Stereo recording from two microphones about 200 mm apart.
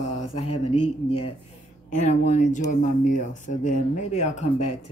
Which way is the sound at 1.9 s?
35° left (ahead or behind).